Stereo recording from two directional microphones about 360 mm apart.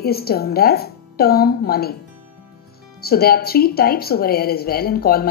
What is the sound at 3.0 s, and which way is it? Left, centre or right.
Speech, left.